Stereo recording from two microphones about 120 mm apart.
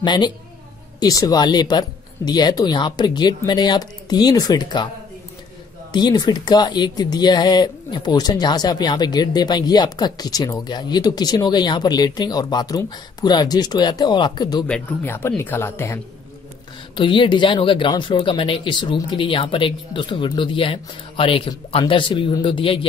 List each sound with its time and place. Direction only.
0.0 s speech: 40° left (ahead or behind)
5.9 s speech: 35° left (ahead or behind)
14.7 s speech: 15° left (ahead or behind)
16.9 s speech: 45° left (ahead or behind)